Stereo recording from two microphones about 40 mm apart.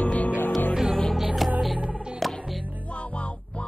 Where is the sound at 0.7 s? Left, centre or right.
Centre.